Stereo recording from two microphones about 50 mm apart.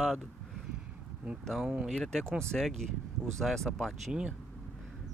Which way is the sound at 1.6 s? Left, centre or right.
Right.